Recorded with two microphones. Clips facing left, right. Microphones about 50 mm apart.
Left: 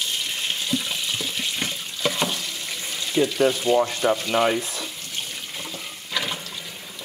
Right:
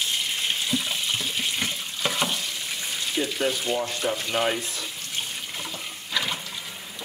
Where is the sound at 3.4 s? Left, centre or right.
Left.